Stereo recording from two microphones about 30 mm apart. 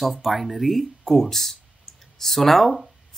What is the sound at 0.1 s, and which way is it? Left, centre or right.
Speech, centre.